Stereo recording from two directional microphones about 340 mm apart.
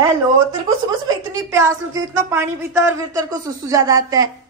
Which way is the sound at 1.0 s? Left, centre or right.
Centre.